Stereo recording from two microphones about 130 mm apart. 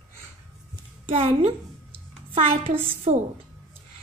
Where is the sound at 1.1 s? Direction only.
50° right (ahead or behind).